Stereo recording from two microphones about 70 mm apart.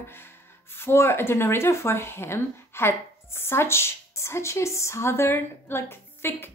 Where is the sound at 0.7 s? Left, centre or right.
Left.